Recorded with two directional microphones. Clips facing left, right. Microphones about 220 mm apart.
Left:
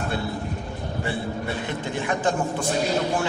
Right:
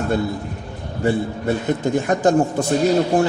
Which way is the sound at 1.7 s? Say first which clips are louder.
Right 9 dB; 45° right (ahead or behind).